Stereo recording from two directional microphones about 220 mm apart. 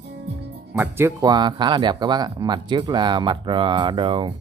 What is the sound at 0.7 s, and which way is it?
Speech, 10° right (ahead or behind).